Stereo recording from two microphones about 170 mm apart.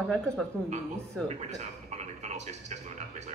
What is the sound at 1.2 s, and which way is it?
A man's voice, 40° right (ahead or behind).